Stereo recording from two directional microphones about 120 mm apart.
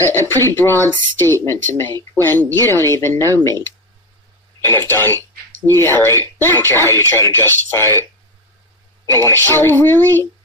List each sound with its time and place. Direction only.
0.0 s speech: 20° left (ahead or behind)
9.1 s speech: 20° left (ahead or behind)